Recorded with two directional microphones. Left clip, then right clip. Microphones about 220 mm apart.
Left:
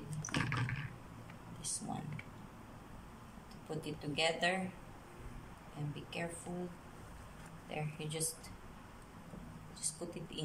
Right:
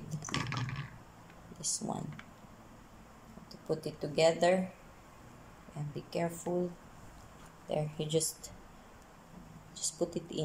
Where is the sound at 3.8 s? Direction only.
25° right (ahead or behind).